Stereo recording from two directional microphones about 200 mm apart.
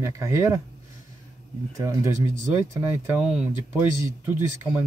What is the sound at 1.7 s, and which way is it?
Speech, 15° right (ahead or behind).